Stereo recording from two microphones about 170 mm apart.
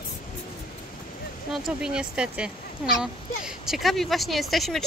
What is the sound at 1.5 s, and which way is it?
Speech, 5° right (ahead or behind).